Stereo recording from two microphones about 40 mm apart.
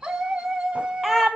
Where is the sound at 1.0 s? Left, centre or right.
Centre.